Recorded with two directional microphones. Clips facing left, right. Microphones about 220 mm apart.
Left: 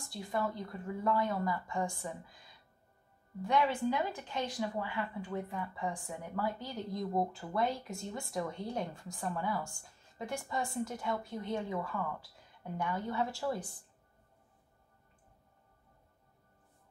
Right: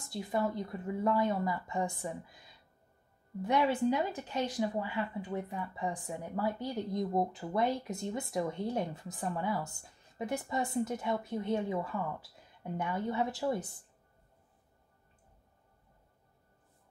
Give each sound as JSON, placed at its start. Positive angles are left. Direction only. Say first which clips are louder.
{"t": 0.3, "sound": "speech", "louder": "right 3 dB", "side_deg": -20}
{"t": 3.4, "sound": "speech", "louder": "right 2 dB", "side_deg": -25}